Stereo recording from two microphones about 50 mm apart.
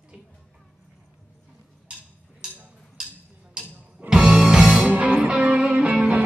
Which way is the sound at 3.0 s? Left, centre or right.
Centre.